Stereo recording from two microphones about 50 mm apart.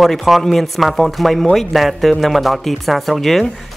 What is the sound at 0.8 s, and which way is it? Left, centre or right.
Speech, centre.